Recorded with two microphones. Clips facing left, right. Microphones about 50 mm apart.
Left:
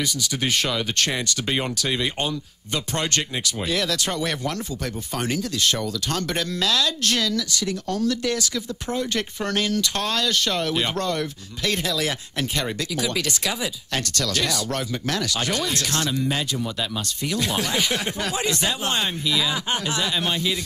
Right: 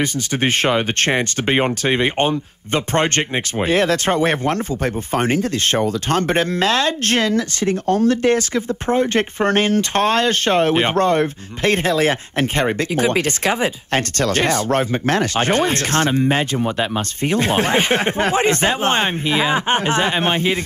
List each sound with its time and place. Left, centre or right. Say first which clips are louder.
0.0 s speech: right 6 dB; right